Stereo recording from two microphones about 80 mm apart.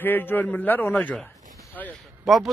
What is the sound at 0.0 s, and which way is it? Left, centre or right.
A man's voice, left.